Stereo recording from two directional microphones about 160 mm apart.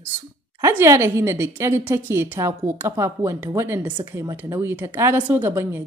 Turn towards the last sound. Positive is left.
turn(degrees=-15)  # may be behind; listen again after turning